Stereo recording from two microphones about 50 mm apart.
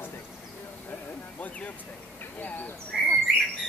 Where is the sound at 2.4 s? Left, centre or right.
Left.